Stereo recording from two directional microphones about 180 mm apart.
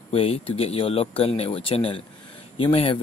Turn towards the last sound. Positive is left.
turn(degrees=30)  # may be behind; listen again after turning